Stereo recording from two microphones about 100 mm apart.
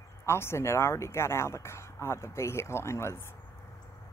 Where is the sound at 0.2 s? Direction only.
25° left (ahead or behind).